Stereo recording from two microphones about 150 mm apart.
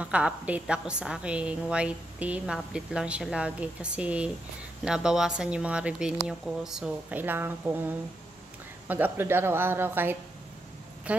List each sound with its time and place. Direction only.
0.0 s a woman's voice: 10° right (ahead or behind)